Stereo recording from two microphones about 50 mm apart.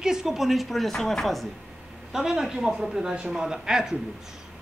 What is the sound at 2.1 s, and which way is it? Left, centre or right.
Speech, centre.